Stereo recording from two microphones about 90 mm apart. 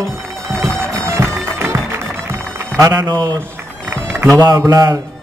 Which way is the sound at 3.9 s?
30° right (ahead or behind).